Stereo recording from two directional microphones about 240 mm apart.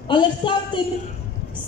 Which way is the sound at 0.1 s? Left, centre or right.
Centre.